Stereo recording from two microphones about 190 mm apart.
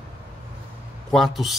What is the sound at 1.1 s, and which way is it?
Speech, centre (ahead or behind).